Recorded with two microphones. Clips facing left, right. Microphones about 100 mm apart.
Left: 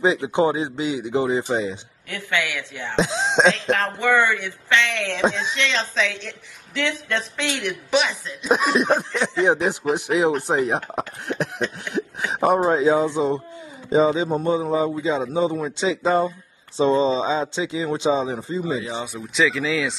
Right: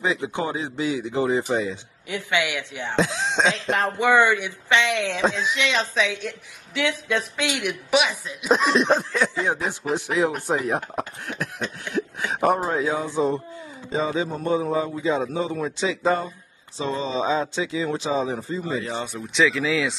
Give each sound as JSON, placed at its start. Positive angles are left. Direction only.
{"t": 0.0, "sound": "a man's voice", "side_deg": 25}
{"t": 2.0, "sound": "a woman's voice", "side_deg": -15}
{"t": 3.0, "sound": "a man's voice", "side_deg": 30}
{"t": 3.7, "sound": "a woman's voice", "side_deg": -15}
{"t": 8.5, "sound": "speech", "side_deg": 5}
{"t": 9.4, "sound": "a man's voice", "side_deg": 20}
{"t": 19.1, "sound": "speech", "side_deg": 0}